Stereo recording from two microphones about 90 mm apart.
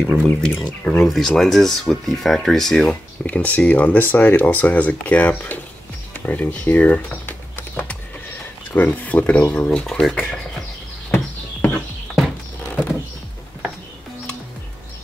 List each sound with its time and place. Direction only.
0.0 s speech: 15° left (ahead or behind)
0.6 s speech: 5° left (ahead or behind)
6.2 s typing: 20° left (ahead or behind)
8.7 s speech: 20° left (ahead or behind)
11.1 s horse: 15° left (ahead or behind)